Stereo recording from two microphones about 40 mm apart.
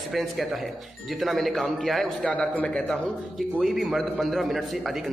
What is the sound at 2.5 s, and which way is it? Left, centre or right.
Speech, left.